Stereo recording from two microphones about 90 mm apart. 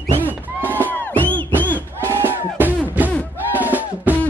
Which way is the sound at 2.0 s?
25° right (ahead or behind).